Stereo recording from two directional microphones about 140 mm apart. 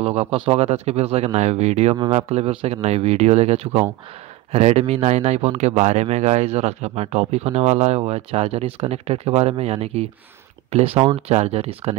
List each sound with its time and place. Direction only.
0.0 s speech: 45° right (ahead or behind)